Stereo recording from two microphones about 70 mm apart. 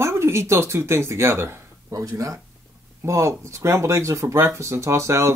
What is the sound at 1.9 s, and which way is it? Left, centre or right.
Speech, right.